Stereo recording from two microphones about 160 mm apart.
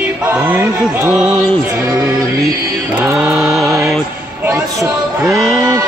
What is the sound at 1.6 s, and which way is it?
Music, 20° right (ahead or behind).